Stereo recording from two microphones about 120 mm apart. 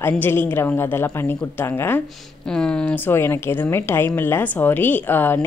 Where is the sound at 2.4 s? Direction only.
5° left (ahead or behind).